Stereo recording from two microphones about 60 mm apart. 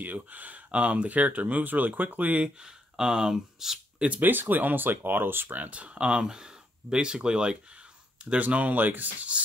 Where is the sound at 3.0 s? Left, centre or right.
Centre.